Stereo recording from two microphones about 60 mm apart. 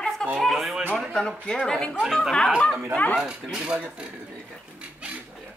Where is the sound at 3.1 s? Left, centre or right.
Centre.